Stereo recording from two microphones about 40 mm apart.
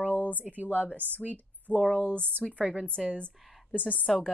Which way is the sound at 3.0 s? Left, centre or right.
Centre.